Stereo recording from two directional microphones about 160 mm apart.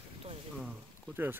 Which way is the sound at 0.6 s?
5° right (ahead or behind).